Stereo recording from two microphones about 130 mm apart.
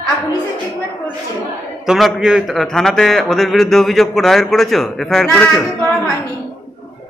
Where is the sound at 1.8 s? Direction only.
5° right (ahead or behind).